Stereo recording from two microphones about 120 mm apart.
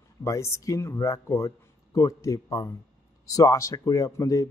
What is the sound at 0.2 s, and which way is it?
Speech, 25° left (ahead or behind).